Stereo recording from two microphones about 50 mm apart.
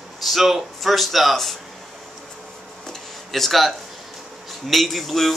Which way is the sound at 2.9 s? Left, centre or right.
Centre.